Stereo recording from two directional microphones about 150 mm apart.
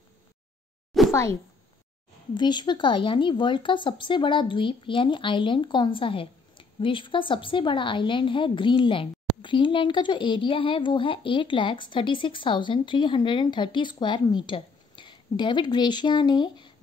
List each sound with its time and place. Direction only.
1.0 s plop: centre (ahead or behind)
2.3 s speech: 30° left (ahead or behind)